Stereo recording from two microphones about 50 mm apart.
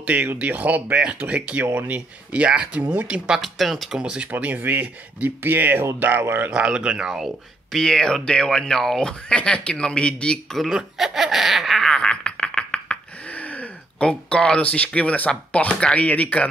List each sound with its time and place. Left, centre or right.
0.0 s speech: right
3.3 s speech: centre
4.0 s speech: centre
4.3 s speech: right
6.2 s speech: right
6.5 s speech: centre
7.7 s speech: centre
10.5 s speech: centre
11.3 s a sound: centre
13.3 s a sound: left
14.0 s speech: centre